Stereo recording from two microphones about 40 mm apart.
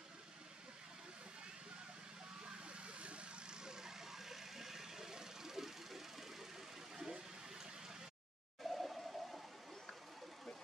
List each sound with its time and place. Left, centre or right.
2.4 s vehicle: right
3.6 s vehicle: centre
7.0 s water: centre
8.6 s a sound: centre